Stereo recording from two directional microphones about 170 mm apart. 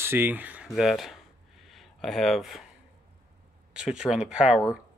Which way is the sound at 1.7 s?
Centre (ahead or behind).